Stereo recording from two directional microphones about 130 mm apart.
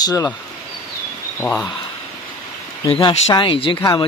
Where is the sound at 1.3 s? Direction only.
5° left (ahead or behind).